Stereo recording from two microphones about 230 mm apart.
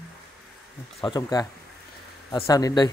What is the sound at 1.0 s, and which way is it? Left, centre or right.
Speech, centre.